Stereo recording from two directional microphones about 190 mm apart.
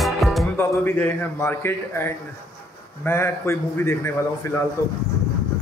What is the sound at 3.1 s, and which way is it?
A man's voice, 10° left (ahead or behind).